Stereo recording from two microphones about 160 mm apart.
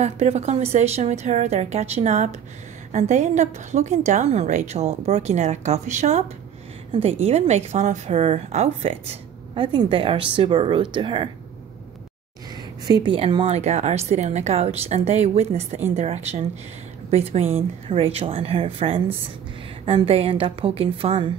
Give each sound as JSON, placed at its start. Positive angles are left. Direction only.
{"t": 0.0, "sound": "a woman's voice", "side_deg": -45}
{"t": 13.0, "sound": "a woman's voice", "side_deg": -30}
{"t": 13.6, "sound": "a woman's voice", "side_deg": -45}